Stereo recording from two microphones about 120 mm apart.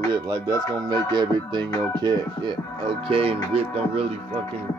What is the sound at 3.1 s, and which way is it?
Speech, 50° right (ahead or behind).